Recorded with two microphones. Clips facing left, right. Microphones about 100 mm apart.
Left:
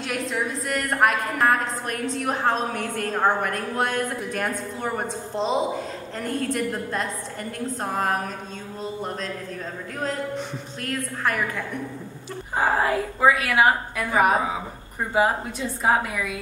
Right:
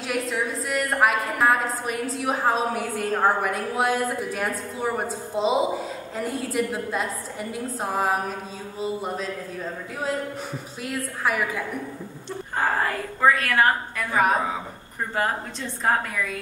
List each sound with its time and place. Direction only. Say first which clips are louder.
0.1 s a woman's voice: right 1 dB; centre (ahead or behind)
12.5 s a woman's voice: left 3 dB; 10° left (ahead or behind)